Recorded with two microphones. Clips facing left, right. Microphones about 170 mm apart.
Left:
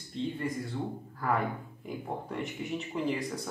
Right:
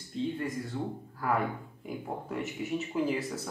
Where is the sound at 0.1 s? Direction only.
Centre (ahead or behind).